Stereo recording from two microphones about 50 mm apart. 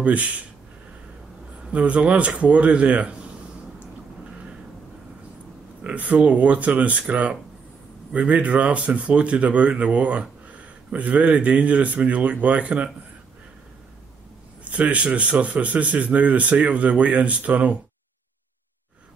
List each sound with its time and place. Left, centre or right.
0.0 s speech: right
1.6 s speech: right
5.9 s speech: right
14.6 s a man's voice: right